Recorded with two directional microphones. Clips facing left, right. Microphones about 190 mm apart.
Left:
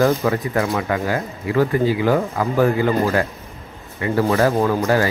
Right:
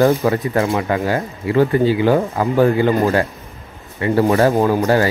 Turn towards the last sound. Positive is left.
turn(degrees=-25)  # may be behind; listen again after turning